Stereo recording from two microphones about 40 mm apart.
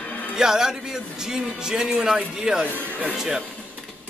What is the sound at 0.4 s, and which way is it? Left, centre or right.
Speech, centre.